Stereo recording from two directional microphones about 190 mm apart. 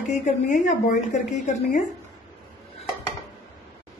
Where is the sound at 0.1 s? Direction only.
40° left (ahead or behind).